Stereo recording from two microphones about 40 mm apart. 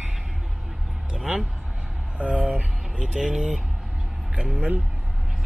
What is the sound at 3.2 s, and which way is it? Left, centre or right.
Speech, centre.